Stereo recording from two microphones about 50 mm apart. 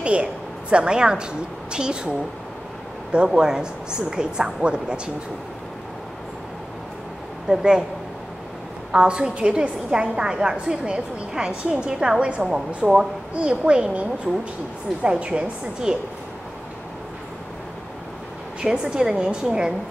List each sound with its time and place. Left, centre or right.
0.0 s a woman's voice: right
3.3 s a woman's voice: centre
7.4 s a woman's voice: centre
8.9 s a woman's voice: centre
18.6 s a woman's voice: centre